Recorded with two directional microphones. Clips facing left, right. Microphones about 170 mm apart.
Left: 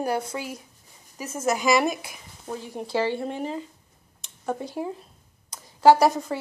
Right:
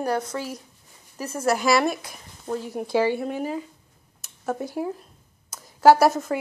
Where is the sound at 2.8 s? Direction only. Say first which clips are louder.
Right 3 dB; 10° right (ahead or behind).